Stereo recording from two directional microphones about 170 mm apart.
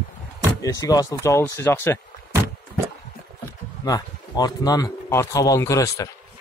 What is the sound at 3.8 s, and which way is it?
Speech, 25° left (ahead or behind).